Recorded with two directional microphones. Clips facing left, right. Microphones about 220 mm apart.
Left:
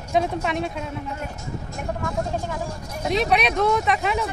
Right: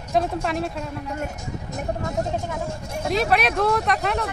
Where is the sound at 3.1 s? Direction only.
Centre (ahead or behind).